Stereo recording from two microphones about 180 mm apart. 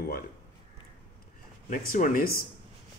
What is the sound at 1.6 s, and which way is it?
Speech, 45° left (ahead or behind).